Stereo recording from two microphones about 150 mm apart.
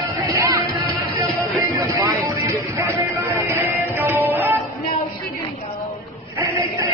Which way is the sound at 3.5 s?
15° right (ahead or behind).